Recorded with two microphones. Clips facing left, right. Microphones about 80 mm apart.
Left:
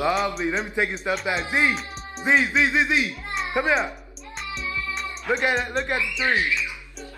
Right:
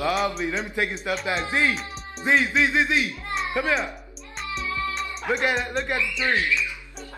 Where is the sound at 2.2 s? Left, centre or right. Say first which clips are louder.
Left 1 dB; centre.